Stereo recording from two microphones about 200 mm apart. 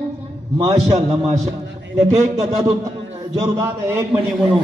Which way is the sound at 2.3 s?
30° right (ahead or behind).